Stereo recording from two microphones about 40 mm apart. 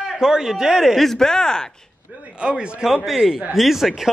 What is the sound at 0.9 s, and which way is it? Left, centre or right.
Speech, centre.